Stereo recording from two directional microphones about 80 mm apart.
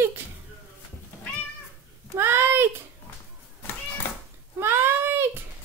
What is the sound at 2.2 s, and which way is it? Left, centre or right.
Speech, right.